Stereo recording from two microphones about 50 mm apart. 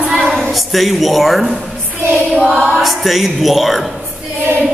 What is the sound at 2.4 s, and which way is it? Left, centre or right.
Choir, right.